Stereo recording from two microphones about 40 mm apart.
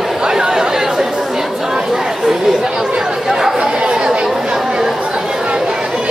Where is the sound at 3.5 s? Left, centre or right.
Right.